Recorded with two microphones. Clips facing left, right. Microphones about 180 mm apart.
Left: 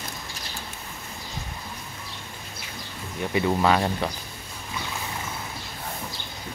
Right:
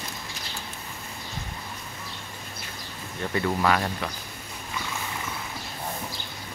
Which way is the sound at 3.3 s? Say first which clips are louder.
Left 3 dB; 20° left (ahead or behind).